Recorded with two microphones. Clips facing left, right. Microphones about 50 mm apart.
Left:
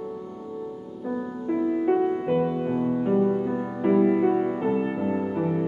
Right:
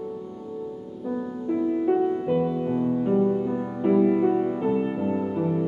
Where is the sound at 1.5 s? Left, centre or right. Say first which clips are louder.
Even; left.